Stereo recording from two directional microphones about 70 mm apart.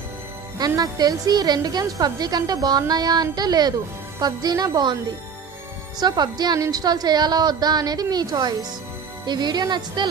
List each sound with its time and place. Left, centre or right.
0.6 s a woman's voice: right
5.9 s a woman's voice: right
6.6 s a woman's voice: right
9.2 s speech: right